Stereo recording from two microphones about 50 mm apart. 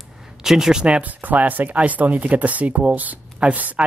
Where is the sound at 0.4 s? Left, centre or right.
Centre.